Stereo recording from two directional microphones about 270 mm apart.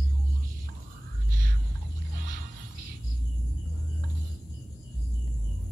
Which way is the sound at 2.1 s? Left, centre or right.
Right.